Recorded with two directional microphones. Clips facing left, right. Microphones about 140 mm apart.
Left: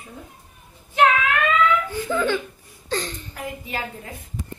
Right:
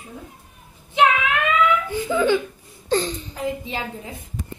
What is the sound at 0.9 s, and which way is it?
A child's voice, 15° right (ahead or behind).